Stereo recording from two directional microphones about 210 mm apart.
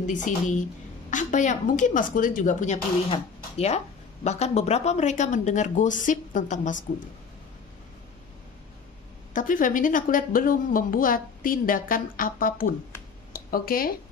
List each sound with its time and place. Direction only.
0.0 s a woman's voice: 35° left (ahead or behind)
9.3 s a woman's voice: 40° left (ahead or behind)
13.3 s a sound: 45° left (ahead or behind)